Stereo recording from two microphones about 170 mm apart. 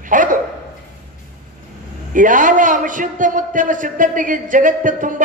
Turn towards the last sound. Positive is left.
turn(degrees=-50)  # may be behind; listen again after turning